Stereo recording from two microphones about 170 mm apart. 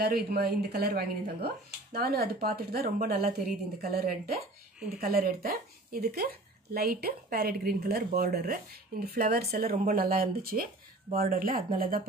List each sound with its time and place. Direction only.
0.0 s speech: 60° right (ahead or behind)